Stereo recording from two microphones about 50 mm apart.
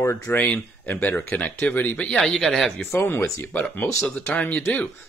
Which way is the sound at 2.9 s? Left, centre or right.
Left.